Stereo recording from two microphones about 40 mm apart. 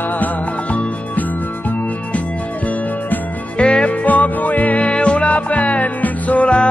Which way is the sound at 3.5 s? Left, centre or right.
Left.